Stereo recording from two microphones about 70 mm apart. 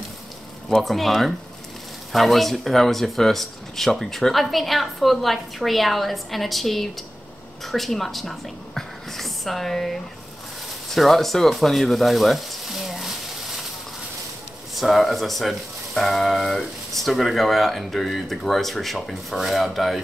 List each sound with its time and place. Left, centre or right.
0.7 s a woman's voice: centre
10.9 s frying: centre
14.8 s speech: centre